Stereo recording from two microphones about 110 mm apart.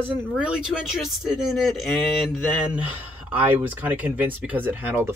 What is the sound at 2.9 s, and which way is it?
Speech, 15° right (ahead or behind).